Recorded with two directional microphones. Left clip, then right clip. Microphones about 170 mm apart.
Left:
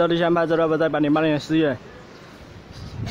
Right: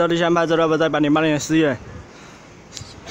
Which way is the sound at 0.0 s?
5° right (ahead or behind).